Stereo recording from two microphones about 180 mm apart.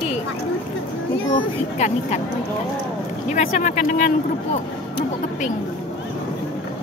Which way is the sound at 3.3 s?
40° left (ahead or behind).